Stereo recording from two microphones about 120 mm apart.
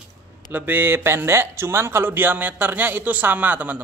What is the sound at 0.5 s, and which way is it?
Speech, 15° right (ahead or behind).